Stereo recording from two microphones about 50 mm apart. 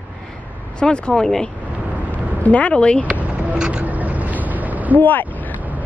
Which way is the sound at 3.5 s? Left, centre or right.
Centre.